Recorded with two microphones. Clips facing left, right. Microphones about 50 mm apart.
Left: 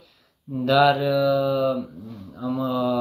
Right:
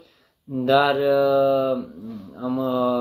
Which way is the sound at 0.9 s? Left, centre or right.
Right.